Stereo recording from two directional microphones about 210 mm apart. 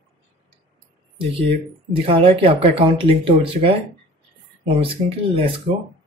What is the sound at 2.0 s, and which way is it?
Speech, 25° right (ahead or behind).